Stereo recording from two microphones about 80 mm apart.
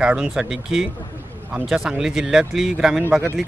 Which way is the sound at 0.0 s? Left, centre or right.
Centre.